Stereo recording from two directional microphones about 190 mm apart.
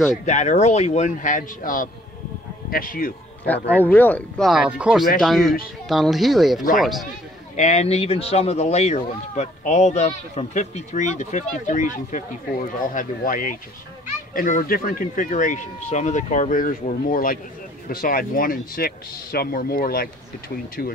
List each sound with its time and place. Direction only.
0.2 s speech: 40° left (ahead or behind)
3.4 s speech: 10° left (ahead or behind)
4.5 s speech: 5° right (ahead or behind)
7.5 s speech: 40° left (ahead or behind)